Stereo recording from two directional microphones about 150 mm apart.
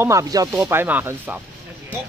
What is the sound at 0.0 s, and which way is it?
Speech, 20° right (ahead or behind).